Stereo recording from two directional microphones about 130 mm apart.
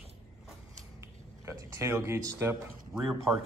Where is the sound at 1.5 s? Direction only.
25° right (ahead or behind).